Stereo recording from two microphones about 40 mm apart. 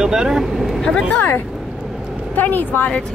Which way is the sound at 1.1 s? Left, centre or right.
Left.